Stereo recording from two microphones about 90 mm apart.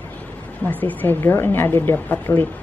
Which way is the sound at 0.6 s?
20° left (ahead or behind).